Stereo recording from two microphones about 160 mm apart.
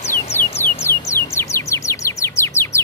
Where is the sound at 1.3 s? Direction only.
20° left (ahead or behind).